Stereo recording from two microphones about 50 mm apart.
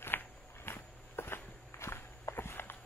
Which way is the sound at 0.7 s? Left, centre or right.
Left.